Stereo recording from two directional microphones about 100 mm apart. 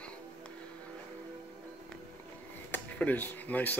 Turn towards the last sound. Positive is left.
turn(degrees=15)  # may be behind; listen again after turning